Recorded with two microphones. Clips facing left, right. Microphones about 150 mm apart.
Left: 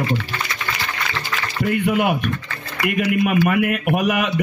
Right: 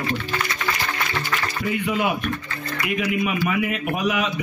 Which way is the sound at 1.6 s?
55° left (ahead or behind).